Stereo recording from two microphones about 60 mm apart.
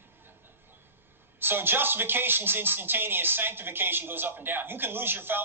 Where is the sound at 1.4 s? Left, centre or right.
Right.